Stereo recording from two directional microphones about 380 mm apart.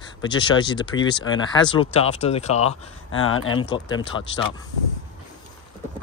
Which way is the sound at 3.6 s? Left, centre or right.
Centre.